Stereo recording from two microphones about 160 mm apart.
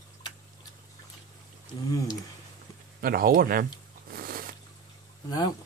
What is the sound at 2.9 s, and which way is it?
Speech, 70° right (ahead or behind).